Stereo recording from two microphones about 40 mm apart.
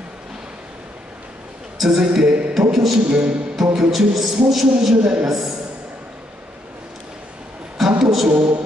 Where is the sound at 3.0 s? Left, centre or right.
Right.